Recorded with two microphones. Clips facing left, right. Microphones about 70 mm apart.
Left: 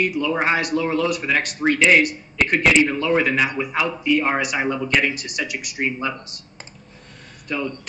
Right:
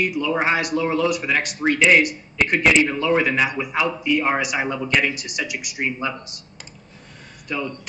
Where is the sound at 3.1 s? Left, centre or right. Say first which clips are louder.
Even; centre.